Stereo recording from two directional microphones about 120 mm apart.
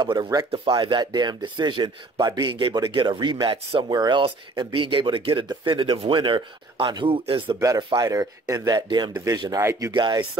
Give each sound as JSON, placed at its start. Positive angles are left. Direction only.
{"t": 0.0, "sound": "speech", "side_deg": -35}
{"t": 7.6, "sound": "speech", "side_deg": -30}